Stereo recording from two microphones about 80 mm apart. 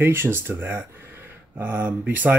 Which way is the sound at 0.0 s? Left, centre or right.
Right.